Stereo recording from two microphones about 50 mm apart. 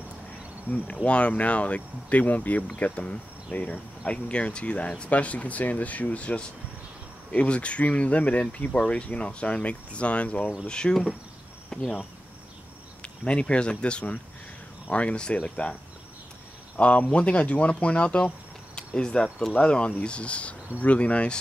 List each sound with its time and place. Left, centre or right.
0.7 s speech: left
4.0 s speech: left
10.7 s speech: centre
11.7 s insect: centre
13.0 s speech: left
16.7 s speech: left